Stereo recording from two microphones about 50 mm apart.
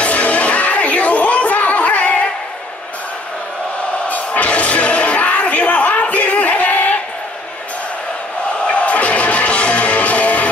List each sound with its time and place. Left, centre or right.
0.0 s a sound: left
4.1 s music: left
8.6 s music: left